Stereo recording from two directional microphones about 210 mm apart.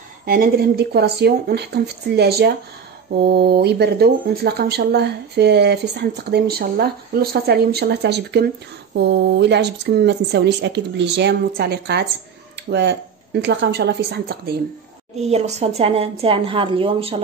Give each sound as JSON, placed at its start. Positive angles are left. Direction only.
{"t": 0.2, "sound": "speech", "side_deg": -45}
{"t": 15.1, "sound": "a woman's voice", "side_deg": -30}